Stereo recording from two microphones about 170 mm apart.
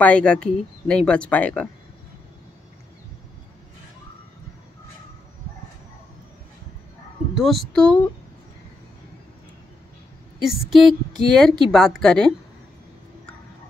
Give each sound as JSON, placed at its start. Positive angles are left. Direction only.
{"t": 0.0, "sound": "speech", "side_deg": 5}
{"t": 7.3, "sound": "speech", "side_deg": 5}
{"t": 10.4, "sound": "speech", "side_deg": 0}